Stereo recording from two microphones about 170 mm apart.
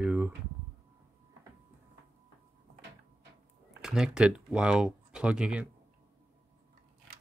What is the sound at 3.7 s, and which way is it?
Speech, 5° right (ahead or behind).